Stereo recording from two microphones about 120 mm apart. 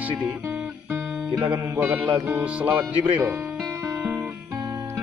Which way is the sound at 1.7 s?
15° right (ahead or behind).